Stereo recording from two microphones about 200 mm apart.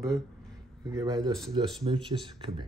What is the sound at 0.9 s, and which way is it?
Speech, 20° right (ahead or behind).